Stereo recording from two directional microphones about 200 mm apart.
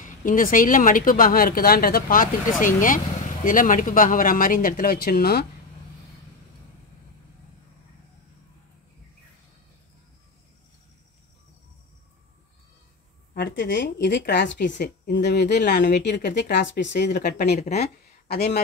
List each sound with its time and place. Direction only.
0.0 s speech: 40° left (ahead or behind)
13.3 s speech: 50° left (ahead or behind)